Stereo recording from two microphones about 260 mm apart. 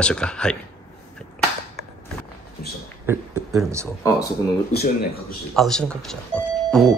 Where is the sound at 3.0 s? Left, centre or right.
Centre.